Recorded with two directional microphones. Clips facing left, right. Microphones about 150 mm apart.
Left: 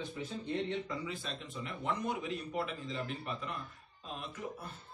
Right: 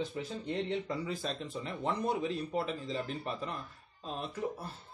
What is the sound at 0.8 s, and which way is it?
A man's voice, 40° right (ahead or behind).